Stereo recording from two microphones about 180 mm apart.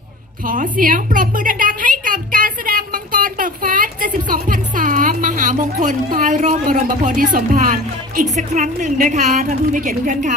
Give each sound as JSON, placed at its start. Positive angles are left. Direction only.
{"t": 0.5, "sound": "a woman's voice", "side_deg": -50}